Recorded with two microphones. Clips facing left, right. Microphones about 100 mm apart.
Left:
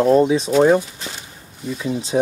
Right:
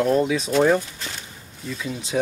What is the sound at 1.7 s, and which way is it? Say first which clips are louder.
Speech: left 6 dB; 25° left (ahead or behind).